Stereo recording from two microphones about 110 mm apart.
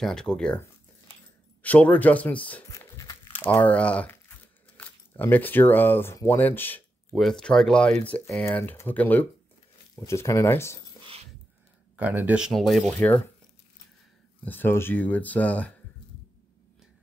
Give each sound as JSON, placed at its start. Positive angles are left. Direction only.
{"t": 0.0, "sound": "speech", "side_deg": 5}
{"t": 1.6, "sound": "speech", "side_deg": 15}
{"t": 7.2, "sound": "speech", "side_deg": 5}
{"t": 9.9, "sound": "speech", "side_deg": 25}
{"t": 12.0, "sound": "speech", "side_deg": -15}
{"t": 14.4, "sound": "speech", "side_deg": 15}